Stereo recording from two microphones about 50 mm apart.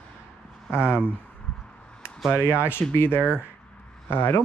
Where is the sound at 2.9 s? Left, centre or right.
Left.